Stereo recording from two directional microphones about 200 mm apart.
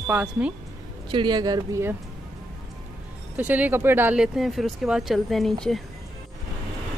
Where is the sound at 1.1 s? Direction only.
25° right (ahead or behind).